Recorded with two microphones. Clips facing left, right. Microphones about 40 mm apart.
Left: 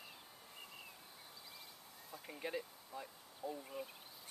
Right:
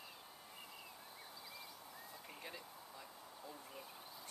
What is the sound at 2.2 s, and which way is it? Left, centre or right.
Speech, centre.